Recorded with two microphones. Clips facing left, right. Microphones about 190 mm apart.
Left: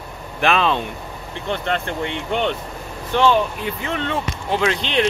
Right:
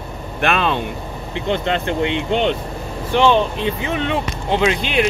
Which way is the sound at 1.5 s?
20° right (ahead or behind).